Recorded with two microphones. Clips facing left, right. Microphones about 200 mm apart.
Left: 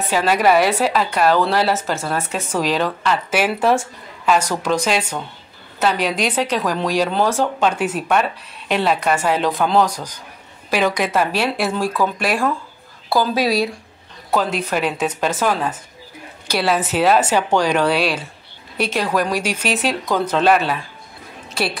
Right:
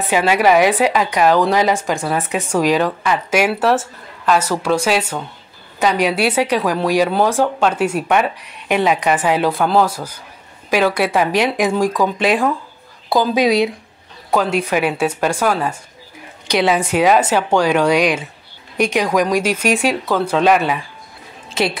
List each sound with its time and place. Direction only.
0.1 s speech: 10° right (ahead or behind)
16.7 s speech: 10° right (ahead or behind)
21.5 s a sound: 20° right (ahead or behind)